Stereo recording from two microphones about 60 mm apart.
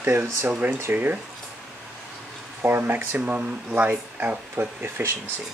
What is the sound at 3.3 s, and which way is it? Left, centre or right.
Speech, right.